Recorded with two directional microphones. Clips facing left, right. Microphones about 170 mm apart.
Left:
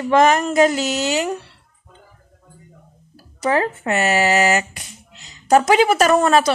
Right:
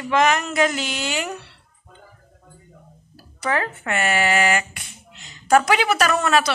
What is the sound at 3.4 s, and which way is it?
Speech, 30° left (ahead or behind).